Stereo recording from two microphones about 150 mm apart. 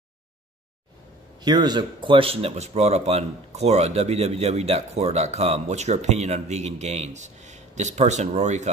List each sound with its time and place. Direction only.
1.4 s speech: 30° right (ahead or behind); by 8.6 s 50° right (ahead or behind)